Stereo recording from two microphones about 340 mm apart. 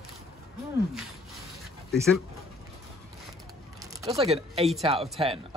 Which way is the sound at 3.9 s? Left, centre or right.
Centre.